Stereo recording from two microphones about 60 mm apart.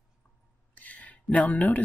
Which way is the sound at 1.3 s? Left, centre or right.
Left.